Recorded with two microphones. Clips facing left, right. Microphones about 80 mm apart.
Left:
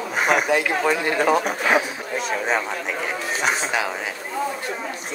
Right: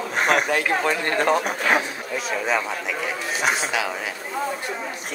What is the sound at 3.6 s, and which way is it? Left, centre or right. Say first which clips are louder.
Speech: left 1 dB; left.